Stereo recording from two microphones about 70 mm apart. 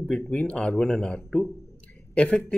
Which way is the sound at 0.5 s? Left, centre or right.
Centre.